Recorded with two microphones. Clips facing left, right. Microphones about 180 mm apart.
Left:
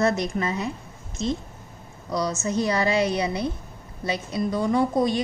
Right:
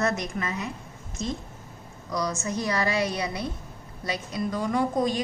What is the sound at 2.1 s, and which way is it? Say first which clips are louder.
A woman's voice: left 4 dB; 25° left (ahead or behind).